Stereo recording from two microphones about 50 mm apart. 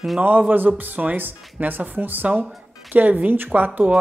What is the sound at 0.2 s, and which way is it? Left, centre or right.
Speech, right.